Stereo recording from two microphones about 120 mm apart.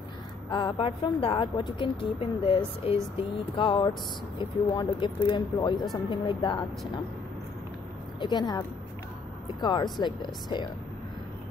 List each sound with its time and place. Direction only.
0.5 s a woman's voice: 40° left (ahead or behind)
8.2 s speech: 35° left (ahead or behind)